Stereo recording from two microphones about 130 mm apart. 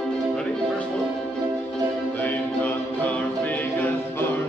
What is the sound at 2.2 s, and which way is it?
Music, 10° left (ahead or behind).